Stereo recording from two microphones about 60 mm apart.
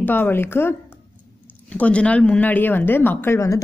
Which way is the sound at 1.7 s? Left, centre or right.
Left.